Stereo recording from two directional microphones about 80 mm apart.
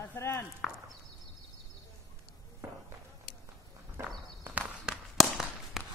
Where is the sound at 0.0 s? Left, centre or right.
Left.